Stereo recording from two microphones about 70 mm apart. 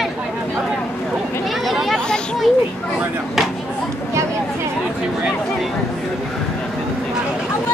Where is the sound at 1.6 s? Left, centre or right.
Centre.